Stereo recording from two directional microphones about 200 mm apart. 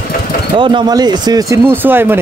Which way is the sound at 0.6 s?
20° right (ahead or behind).